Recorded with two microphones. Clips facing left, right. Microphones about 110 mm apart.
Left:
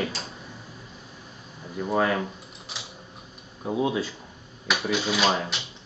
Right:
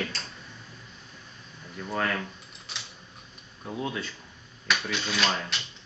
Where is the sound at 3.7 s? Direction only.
15° left (ahead or behind).